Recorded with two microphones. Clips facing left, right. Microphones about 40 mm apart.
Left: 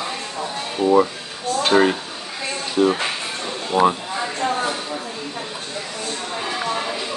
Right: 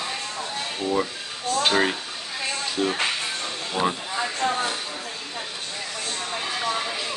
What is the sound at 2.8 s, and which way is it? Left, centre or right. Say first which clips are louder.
Speech: left 8 dB; left.